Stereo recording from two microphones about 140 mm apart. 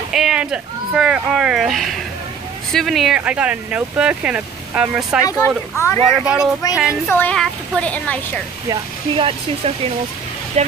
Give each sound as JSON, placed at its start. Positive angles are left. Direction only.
{"t": 0.1, "sound": "speech", "side_deg": -5}
{"t": 5.8, "sound": "speech", "side_deg": 20}
{"t": 6.0, "sound": "speech", "side_deg": 0}
{"t": 7.1, "sound": "speech", "side_deg": 15}
{"t": 8.6, "sound": "speech", "side_deg": -35}